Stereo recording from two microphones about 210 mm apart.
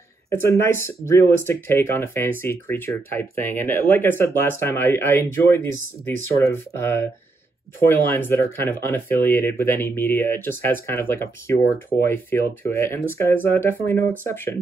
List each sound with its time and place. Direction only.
0.3 s speech: 10° left (ahead or behind)